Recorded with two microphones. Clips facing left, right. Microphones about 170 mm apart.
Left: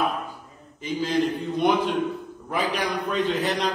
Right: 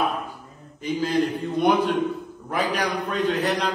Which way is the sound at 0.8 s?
Centre (ahead or behind).